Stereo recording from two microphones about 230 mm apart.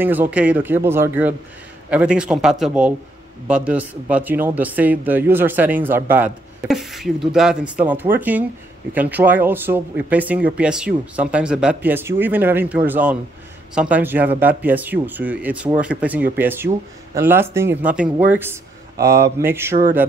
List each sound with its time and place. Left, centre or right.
0.0 s a man's voice: centre